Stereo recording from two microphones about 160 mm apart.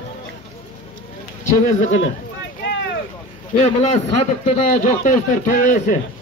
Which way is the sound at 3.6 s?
45° left (ahead or behind).